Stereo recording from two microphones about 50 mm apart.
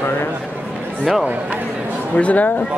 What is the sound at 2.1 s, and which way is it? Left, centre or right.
Speech, left.